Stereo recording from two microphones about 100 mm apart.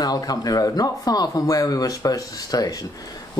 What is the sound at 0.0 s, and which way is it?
Speech, 40° left (ahead or behind).